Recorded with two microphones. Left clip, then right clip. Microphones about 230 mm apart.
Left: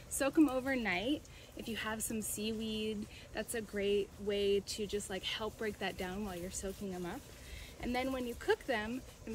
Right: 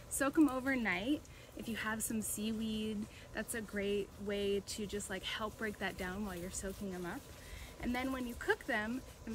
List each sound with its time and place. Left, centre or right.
0.2 s speech: centre